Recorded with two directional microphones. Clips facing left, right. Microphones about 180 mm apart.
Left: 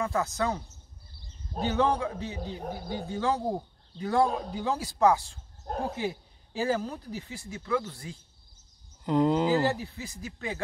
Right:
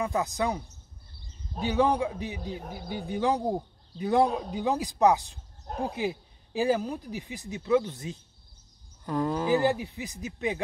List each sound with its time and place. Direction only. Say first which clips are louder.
0.0 s a man's voice: right 1 dB; 15° right (ahead or behind)
9.0 s speech: left 4 dB; 20° left (ahead or behind)
9.5 s a man's voice: right 2 dB; 15° right (ahead or behind)